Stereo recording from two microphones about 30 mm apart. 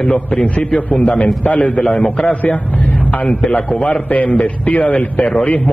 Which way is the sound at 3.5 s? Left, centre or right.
Left.